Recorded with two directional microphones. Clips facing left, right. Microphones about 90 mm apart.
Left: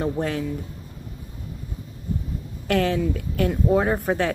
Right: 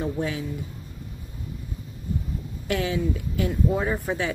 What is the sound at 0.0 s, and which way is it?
Speech, 50° left (ahead or behind).